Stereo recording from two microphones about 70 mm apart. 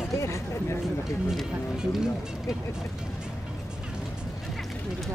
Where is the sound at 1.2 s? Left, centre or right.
Centre.